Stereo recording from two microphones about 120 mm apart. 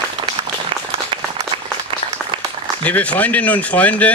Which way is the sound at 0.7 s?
45° right (ahead or behind).